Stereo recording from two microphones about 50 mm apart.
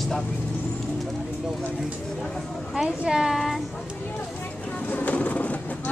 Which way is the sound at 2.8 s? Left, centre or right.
Centre.